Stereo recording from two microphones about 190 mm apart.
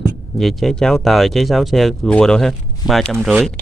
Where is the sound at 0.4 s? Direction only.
Centre (ahead or behind).